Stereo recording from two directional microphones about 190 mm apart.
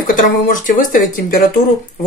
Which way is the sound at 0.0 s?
45° left (ahead or behind).